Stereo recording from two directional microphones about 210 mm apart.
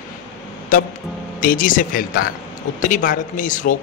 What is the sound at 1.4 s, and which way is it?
Speech, 40° left (ahead or behind).